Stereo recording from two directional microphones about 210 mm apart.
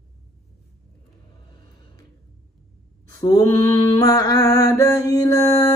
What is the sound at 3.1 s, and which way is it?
Mantra, 20° left (ahead or behind).